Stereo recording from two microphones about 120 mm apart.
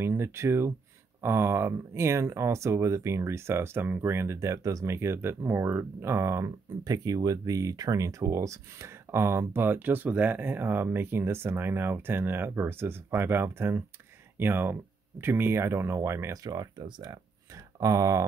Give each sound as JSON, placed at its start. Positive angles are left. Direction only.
{"t": 0.0, "sound": "speech", "side_deg": -20}
{"t": 16.4, "sound": "speech", "side_deg": -35}